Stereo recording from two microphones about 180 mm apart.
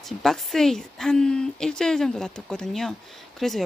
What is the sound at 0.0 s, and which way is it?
Speech, centre (ahead or behind).